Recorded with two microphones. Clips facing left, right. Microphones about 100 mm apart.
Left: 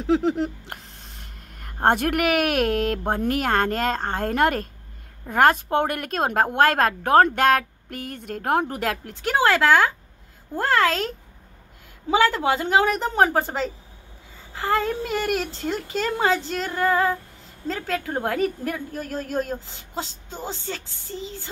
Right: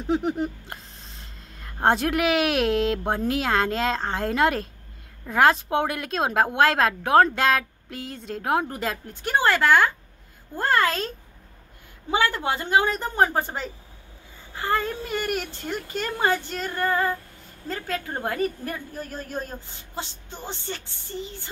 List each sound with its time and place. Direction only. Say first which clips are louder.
0.0 s a woman's voice: left 3 dB; 90° left
12.1 s a woman's voice: left 4 dB; 90° left